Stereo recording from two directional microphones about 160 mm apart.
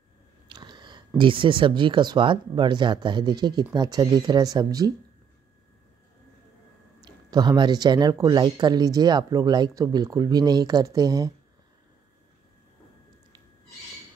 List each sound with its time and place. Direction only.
0.5 s speech: 25° right (ahead or behind)
7.0 s speech: 25° right (ahead or behind)